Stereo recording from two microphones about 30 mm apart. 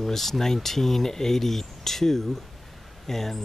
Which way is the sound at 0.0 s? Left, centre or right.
Centre.